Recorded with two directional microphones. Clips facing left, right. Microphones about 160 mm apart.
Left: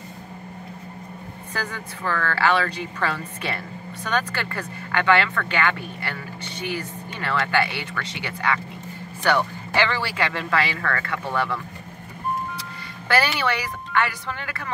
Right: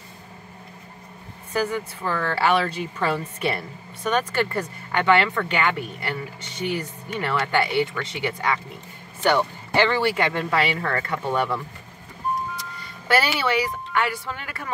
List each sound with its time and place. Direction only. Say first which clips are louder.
1.5 s speech: right 7 dB; 10° right (ahead or behind)
7.2 s speech: right 1 dB; 15° right (ahead or behind)
13.2 s speech: right 1 dB; 10° right (ahead or behind)